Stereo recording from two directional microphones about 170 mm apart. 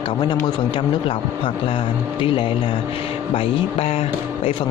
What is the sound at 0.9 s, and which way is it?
Speech, 30° left (ahead or behind).